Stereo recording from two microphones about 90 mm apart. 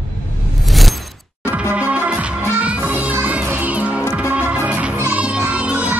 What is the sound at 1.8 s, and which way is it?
Music, 15° right (ahead or behind).